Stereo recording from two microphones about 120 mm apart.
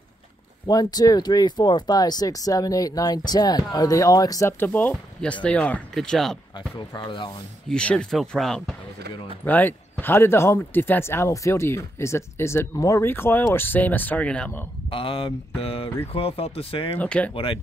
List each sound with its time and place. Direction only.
0.7 s speech: 30° left (ahead or behind); by 6.3 s 5° left (ahead or behind)
6.9 s speech: 40° left (ahead or behind)
7.7 s speech: 5° left (ahead or behind)
9.4 s speech: 15° left (ahead or behind)
14.9 s speech: 50° left (ahead or behind)
17.0 s speech: 10° left (ahead or behind)
17.3 s speech: 50° left (ahead or behind)